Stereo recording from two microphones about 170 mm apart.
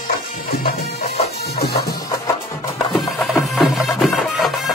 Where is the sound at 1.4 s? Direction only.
65° left (ahead or behind).